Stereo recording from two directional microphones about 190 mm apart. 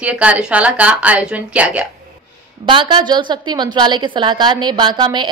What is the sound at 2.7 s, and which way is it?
A woman's voice, 25° right (ahead or behind).